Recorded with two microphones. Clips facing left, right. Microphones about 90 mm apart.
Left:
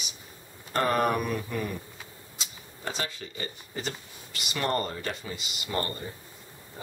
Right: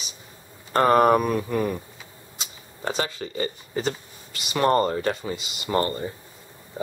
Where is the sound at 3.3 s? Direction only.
40° right (ahead or behind).